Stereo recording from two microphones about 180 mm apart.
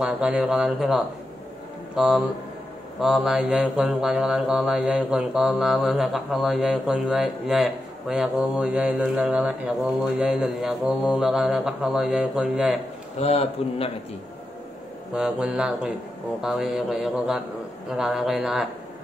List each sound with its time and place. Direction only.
0.0 s mantra: 5° right (ahead or behind)
13.2 s a man's voice: 35° left (ahead or behind)
15.1 s mantra: 5° right (ahead or behind)